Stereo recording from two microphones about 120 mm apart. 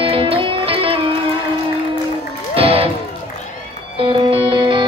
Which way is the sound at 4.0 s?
45° right (ahead or behind).